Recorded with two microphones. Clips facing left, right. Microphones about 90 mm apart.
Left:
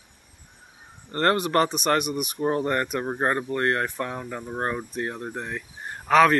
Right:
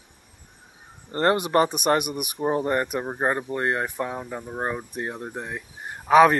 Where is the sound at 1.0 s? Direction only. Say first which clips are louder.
Right 1 dB; 15° right (ahead or behind).